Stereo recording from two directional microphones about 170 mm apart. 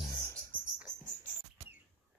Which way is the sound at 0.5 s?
10° left (ahead or behind).